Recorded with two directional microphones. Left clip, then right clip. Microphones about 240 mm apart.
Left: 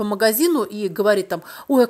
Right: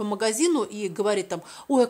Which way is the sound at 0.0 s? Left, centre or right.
Centre.